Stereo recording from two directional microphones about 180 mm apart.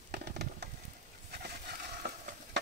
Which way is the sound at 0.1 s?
65° right (ahead or behind).